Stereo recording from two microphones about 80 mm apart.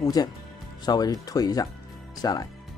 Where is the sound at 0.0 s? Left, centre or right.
Left.